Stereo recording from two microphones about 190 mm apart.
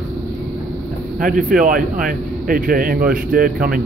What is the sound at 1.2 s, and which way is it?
A man's voice, 45° right (ahead or behind).